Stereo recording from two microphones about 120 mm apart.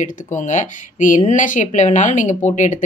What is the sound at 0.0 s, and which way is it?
Speech, 90° left.